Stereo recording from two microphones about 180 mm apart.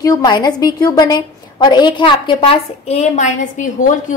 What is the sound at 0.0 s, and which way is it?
A woman's voice, 20° left (ahead or behind).